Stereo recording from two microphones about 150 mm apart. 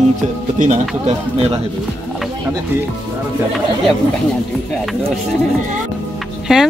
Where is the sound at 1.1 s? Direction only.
45° right (ahead or behind).